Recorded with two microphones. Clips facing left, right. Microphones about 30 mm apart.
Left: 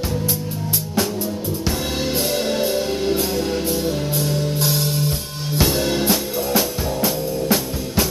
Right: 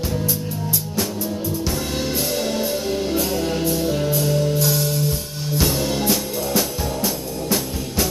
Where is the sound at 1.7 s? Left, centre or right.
Centre.